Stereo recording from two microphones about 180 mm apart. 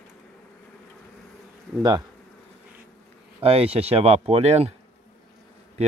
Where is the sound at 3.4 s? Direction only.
35° right (ahead or behind).